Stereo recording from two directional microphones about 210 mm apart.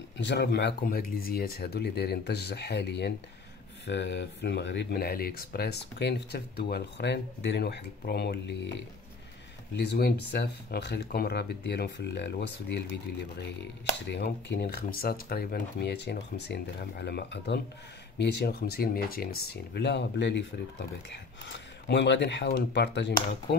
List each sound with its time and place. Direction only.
0.2 s speech: 55° left (ahead or behind)
9.8 s speech: 50° left (ahead or behind)
14.0 s speech: 55° left (ahead or behind)
21.5 s speech: 55° left (ahead or behind)